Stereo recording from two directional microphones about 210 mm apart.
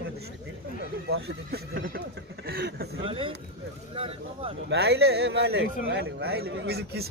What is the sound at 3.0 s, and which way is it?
Speech, 25° right (ahead or behind).